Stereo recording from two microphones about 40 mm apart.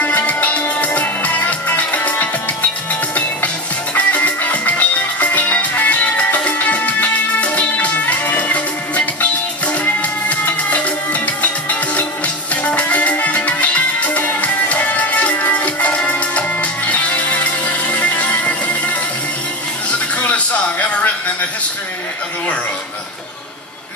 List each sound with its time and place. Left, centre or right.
0.0 s music: left
3.9 s music: left
19.9 s a sound: left